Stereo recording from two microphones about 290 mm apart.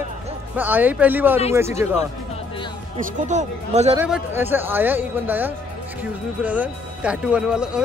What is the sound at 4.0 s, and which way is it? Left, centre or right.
Speech, centre.